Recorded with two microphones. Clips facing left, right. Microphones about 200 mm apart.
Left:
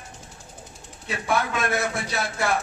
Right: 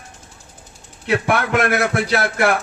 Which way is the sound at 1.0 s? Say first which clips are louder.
Right 6 dB; 75° right (ahead or behind).